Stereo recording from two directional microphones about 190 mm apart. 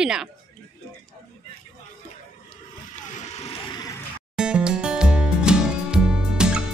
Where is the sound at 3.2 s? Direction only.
35° left (ahead or behind).